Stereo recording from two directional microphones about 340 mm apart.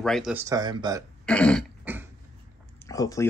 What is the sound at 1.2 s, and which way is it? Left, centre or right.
Cough, centre.